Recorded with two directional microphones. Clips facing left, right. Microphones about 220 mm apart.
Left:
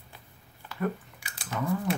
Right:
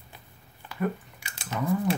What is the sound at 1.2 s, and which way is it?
Chewing, 25° right (ahead or behind).